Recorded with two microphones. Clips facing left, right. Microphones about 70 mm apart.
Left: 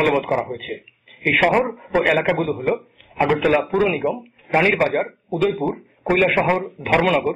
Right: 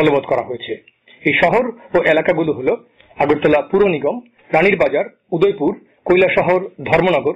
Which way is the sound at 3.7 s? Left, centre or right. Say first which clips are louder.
Right 5 dB; centre.